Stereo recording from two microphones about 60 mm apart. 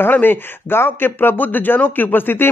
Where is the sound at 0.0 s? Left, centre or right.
Left.